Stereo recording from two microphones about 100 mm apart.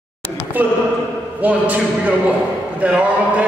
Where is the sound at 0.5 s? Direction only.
20° right (ahead or behind).